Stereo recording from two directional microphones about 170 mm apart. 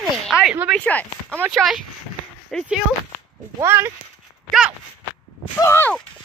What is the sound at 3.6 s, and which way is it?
Speech, 15° right (ahead or behind).